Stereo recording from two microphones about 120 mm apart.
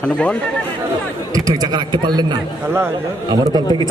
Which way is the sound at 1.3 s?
35° right (ahead or behind).